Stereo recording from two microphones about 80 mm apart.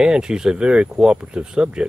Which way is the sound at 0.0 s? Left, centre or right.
Centre.